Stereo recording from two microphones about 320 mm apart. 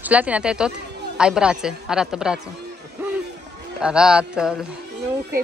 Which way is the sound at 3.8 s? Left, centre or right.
Centre.